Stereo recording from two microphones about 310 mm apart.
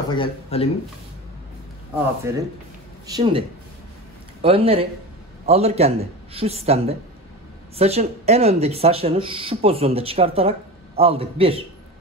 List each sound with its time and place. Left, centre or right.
0.1 s speech: centre
2.3 s a man's voice: centre